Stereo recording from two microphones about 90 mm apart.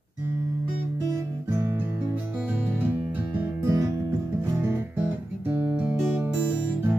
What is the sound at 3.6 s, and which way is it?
Music, 35° right (ahead or behind).